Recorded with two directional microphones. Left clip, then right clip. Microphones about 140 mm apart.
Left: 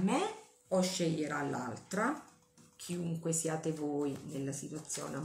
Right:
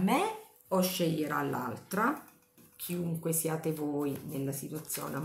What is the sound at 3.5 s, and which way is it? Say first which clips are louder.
Speech: right 2 dB; 20° right (ahead or behind).